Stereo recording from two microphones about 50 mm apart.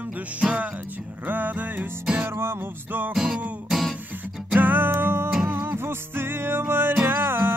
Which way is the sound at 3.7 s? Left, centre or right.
Centre.